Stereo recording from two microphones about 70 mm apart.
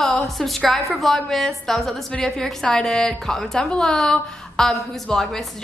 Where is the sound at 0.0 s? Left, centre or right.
Centre.